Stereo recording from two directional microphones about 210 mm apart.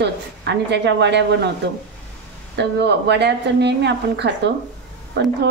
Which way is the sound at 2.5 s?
55° right (ahead or behind).